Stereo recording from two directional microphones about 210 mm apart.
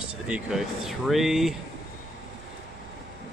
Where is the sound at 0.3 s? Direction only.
Centre (ahead or behind).